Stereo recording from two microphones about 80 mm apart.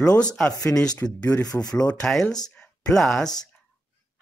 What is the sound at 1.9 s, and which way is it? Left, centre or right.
Speech, centre.